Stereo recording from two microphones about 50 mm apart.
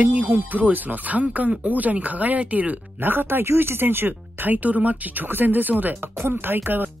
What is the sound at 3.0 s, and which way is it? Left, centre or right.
Speech, right.